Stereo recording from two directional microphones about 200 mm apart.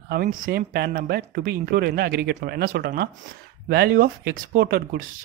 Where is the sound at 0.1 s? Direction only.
50° right (ahead or behind).